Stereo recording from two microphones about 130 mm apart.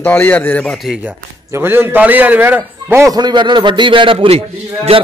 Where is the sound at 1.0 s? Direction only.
15° right (ahead or behind).